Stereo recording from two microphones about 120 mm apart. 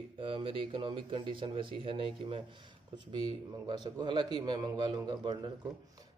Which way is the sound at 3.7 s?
40° right (ahead or behind).